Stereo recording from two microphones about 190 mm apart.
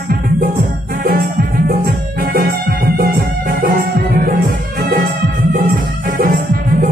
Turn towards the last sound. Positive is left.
turn(degrees=-45)  # may be behind; listen again after turning